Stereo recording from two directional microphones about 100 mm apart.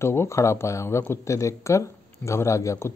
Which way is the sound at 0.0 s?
25° left (ahead or behind).